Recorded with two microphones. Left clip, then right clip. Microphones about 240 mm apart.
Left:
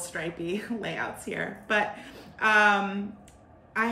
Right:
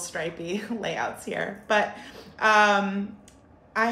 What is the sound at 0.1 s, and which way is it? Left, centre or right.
A woman's voice, centre.